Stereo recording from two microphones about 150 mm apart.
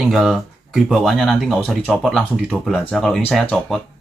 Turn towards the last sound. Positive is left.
turn(degrees=5)  # may be behind; listen again after turning